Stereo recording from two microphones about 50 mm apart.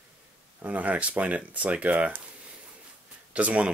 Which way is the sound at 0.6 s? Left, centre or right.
Right.